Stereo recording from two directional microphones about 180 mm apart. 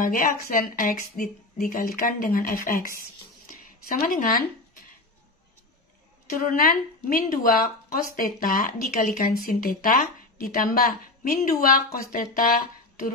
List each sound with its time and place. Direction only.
0.0 s a woman's voice: 50° left (ahead or behind)
6.3 s speech: 50° left (ahead or behind)